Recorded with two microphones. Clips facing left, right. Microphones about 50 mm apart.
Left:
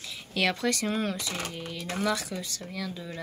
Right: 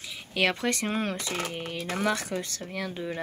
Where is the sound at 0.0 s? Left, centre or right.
Centre.